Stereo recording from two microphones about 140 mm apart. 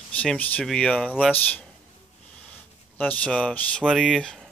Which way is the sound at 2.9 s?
10° left (ahead or behind).